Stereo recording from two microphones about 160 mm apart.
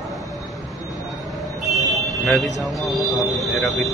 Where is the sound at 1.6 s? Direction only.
Centre (ahead or behind).